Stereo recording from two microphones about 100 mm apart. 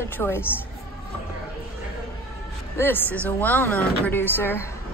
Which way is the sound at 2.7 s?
20° left (ahead or behind).